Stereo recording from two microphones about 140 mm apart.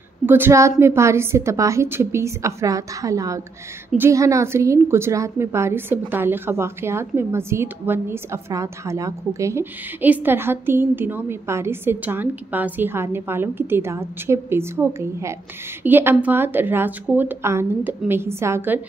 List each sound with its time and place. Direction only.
0.3 s a woman's voice: 20° right (ahead or behind)